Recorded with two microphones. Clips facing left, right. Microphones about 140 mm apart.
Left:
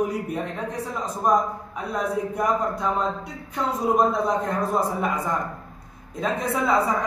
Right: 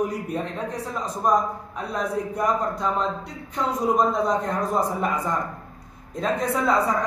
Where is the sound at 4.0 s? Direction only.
5° left (ahead or behind).